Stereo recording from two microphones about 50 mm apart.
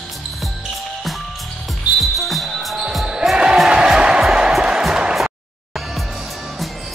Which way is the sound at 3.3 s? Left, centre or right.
Centre.